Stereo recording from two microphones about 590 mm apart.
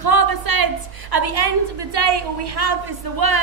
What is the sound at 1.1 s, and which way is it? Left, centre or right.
A woman's voice, right.